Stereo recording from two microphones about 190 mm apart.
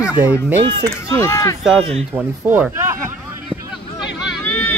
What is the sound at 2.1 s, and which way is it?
Speech, 10° right (ahead or behind).